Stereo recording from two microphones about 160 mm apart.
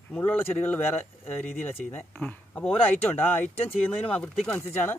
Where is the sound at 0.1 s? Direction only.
10° left (ahead or behind).